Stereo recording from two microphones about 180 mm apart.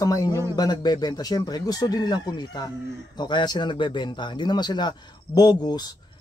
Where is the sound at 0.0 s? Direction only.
20° left (ahead or behind).